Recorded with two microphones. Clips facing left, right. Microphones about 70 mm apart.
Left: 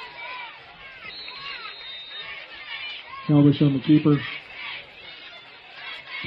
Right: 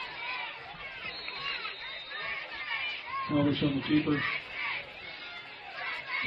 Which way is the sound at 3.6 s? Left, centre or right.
Left.